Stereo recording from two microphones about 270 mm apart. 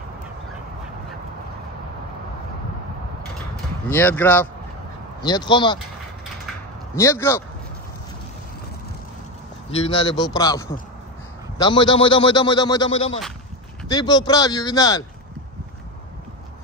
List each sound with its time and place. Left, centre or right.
3.9 s speech: centre
7.0 s speech: centre
9.8 s speech: centre